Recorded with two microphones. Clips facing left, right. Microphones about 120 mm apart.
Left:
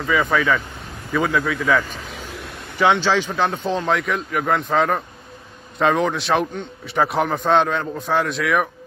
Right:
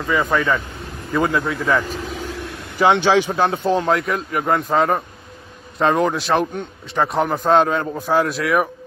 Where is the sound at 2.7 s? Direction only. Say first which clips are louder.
Right 2 dB; 50° right (ahead or behind).